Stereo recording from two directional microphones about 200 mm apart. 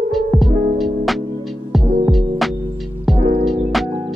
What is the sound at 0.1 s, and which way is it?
Music, centre (ahead or behind).